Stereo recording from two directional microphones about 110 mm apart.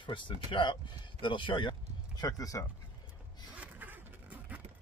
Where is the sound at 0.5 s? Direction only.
45° left (ahead or behind).